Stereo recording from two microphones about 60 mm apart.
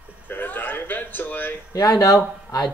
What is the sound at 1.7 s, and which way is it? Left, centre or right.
Speech, left.